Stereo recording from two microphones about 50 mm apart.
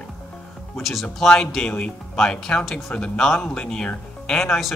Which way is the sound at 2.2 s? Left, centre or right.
Centre.